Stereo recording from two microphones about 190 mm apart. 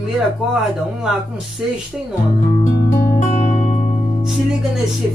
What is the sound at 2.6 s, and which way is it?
Music, 45° left (ahead or behind).